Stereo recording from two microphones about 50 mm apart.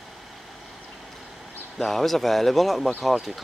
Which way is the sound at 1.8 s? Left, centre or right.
Centre.